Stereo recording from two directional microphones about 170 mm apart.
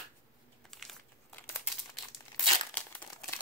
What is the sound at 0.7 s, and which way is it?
Crumpling, centre (ahead or behind).